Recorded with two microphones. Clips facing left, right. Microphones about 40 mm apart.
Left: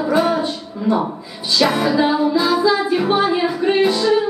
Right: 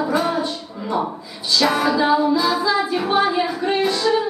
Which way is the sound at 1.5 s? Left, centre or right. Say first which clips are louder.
Left 2 dB; centre.